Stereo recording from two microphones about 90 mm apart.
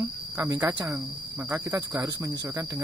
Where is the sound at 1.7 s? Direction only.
50° right (ahead or behind).